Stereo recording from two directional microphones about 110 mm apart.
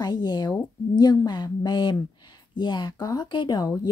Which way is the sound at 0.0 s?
40° left (ahead or behind).